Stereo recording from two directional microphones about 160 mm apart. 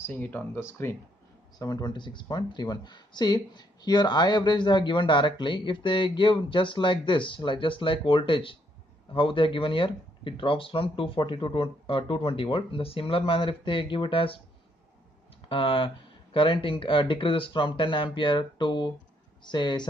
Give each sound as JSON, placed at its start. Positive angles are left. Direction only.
{"t": 0.0, "sound": "speech", "side_deg": 15}
{"t": 15.4, "sound": "speech", "side_deg": 35}